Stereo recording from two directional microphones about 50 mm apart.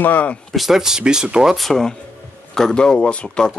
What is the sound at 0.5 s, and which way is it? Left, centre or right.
Speech, centre.